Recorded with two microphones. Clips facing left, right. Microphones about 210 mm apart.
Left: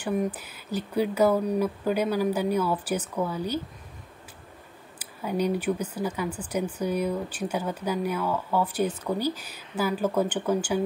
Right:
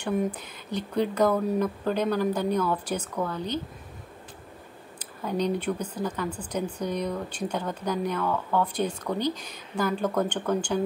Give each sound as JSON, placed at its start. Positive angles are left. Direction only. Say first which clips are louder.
{"t": 0.0, "sound": "speech", "louder": "even", "side_deg": 0}
{"t": 4.9, "sound": "speech", "louder": "left 1 dB", "side_deg": 10}